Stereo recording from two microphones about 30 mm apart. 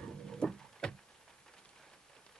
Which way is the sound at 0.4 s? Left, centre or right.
Centre.